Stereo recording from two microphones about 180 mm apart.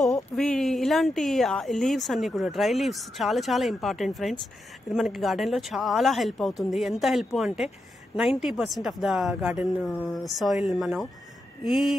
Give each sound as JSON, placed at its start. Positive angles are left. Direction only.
{"t": 0.0, "sound": "speech", "side_deg": 0}